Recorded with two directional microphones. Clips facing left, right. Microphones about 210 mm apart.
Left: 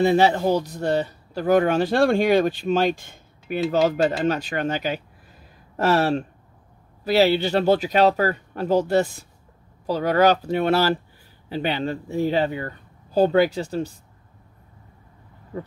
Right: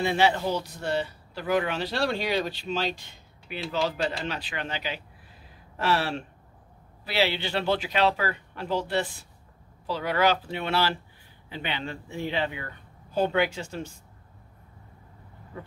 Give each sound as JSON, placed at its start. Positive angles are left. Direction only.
{"t": 0.0, "sound": "speech", "side_deg": 40}